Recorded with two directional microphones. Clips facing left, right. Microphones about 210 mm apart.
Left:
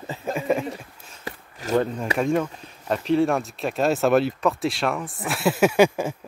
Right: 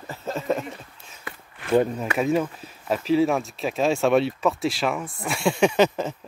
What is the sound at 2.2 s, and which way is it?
Speech, 5° right (ahead or behind).